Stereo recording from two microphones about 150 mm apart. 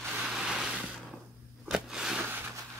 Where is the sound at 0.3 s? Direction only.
5° right (ahead or behind).